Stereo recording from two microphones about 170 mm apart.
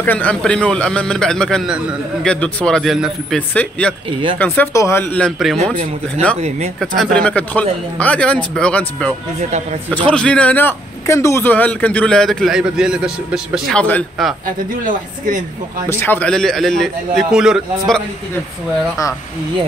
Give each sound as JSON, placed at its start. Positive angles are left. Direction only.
{"t": 0.0, "sound": "a man's voice", "side_deg": 10}
{"t": 7.0, "sound": "a man's voice", "side_deg": 5}
{"t": 13.7, "sound": "a man's voice", "side_deg": 10}
{"t": 14.9, "sound": "a man's voice", "side_deg": -50}
{"t": 15.9, "sound": "a man's voice", "side_deg": 10}